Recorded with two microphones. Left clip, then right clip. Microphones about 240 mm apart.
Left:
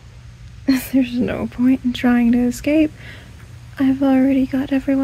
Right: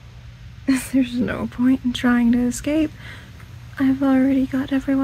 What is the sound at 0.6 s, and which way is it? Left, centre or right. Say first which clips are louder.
A woman's voice: left 2 dB; centre.